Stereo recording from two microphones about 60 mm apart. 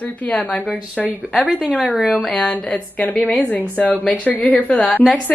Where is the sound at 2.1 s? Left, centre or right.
Centre.